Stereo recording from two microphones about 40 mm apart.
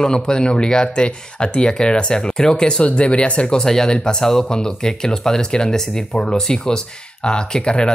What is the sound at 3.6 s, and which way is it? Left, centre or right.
Speech, centre.